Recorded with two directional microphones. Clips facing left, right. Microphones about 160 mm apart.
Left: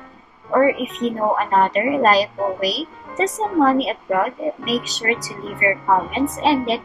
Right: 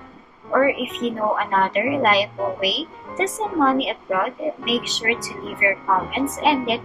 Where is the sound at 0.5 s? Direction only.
35° left (ahead or behind).